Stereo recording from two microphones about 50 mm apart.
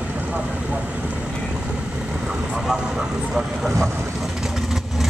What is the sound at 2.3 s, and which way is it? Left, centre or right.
Vehicle, centre.